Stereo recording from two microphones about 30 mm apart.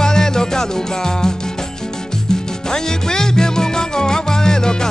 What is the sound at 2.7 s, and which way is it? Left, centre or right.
Music, left.